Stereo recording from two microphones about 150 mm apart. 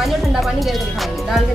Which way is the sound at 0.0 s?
Centre (ahead or behind).